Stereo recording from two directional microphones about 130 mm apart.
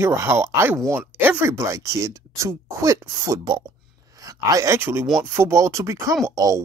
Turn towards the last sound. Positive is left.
turn(degrees=-25)  # may be behind; listen again after turning